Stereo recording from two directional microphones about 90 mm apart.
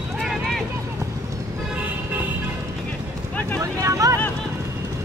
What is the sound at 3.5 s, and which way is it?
Vehicle, 35° right (ahead or behind).